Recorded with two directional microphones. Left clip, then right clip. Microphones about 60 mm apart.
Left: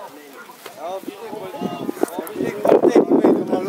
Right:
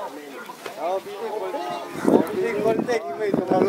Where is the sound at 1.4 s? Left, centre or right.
Left.